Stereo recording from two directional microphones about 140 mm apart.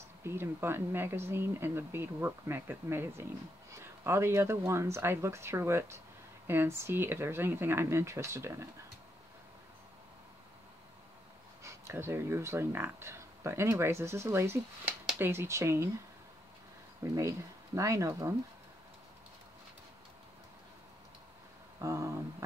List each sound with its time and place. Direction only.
0.2 s speech: 15° right (ahead or behind)
11.6 s speech: 20° right (ahead or behind)
17.0 s speech: 20° right (ahead or behind)
21.8 s a sound: 20° right (ahead or behind)